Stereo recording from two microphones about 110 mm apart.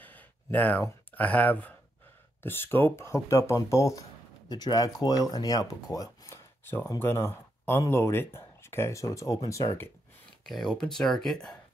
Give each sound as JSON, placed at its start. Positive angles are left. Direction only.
{"t": 0.0, "sound": "a sound", "side_deg": 15}
{"t": 1.1, "sound": "speech", "side_deg": 15}
{"t": 10.4, "sound": "speech", "side_deg": 5}